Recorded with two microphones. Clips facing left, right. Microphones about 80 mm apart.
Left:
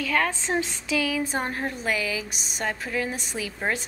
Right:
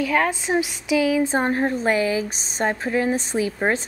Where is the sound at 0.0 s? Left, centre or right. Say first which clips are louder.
Right 4 dB; centre.